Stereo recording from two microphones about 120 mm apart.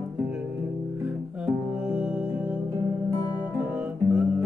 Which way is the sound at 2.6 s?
25° right (ahead or behind).